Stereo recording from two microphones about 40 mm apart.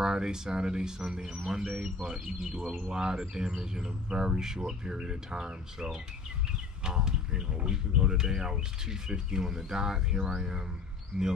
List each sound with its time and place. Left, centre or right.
0.0 s speech: centre
2.9 s speech: centre